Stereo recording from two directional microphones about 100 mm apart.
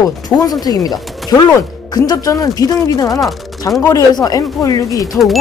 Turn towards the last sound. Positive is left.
turn(degrees=35)  # may be behind; listen again after turning